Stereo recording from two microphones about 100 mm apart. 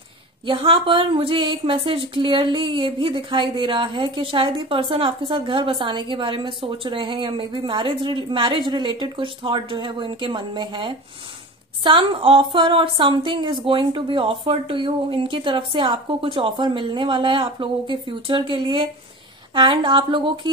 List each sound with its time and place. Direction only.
0.5 s speech: 60° right (ahead or behind)